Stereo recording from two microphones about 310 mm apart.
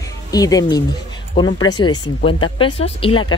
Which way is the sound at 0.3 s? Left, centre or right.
Centre.